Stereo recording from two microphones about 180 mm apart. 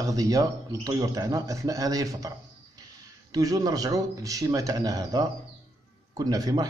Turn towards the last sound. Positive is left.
turn(degrees=-20)  # may be behind; listen again after turning